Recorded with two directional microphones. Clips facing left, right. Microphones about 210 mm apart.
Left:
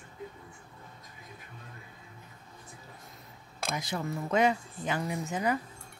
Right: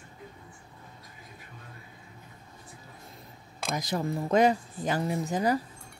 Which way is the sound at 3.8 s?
35° right (ahead or behind).